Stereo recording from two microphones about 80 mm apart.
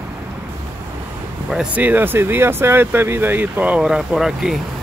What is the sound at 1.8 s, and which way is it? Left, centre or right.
Speech, right.